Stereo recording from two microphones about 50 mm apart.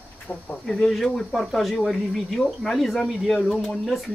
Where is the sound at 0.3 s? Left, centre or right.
Centre.